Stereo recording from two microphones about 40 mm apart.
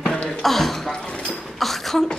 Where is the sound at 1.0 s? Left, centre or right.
Left.